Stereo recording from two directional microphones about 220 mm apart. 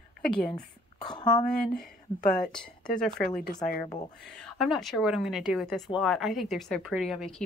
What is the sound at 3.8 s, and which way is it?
Speech, 20° left (ahead or behind).